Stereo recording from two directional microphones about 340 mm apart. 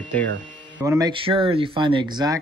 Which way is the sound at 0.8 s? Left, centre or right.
Centre.